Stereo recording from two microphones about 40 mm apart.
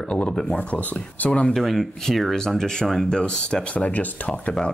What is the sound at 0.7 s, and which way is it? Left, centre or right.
Speech, left.